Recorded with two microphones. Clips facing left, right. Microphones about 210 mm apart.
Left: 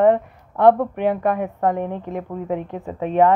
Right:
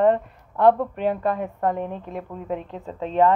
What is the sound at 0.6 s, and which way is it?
A woman's voice, 15° left (ahead or behind).